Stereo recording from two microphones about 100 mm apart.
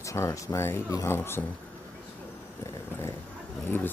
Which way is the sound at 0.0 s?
30° left (ahead or behind).